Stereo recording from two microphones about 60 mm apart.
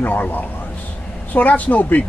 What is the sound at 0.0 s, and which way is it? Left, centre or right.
Speech, left.